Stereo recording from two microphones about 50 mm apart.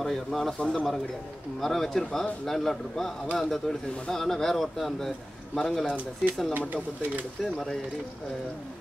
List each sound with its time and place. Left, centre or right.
0.0 s speech: centre